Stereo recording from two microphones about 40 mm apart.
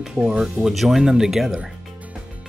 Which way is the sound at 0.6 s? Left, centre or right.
Centre.